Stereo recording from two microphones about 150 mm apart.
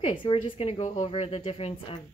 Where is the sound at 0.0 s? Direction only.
35° left (ahead or behind).